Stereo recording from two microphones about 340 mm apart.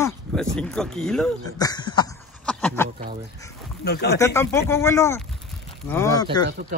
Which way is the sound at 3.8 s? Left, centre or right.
Left.